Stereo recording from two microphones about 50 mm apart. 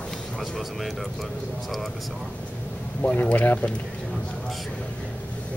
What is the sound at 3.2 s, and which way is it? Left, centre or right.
Speech, left.